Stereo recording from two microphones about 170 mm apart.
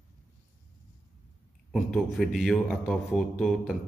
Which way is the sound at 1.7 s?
Centre (ahead or behind).